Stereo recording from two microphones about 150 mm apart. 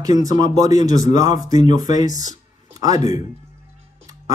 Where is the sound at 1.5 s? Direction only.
55° left (ahead or behind).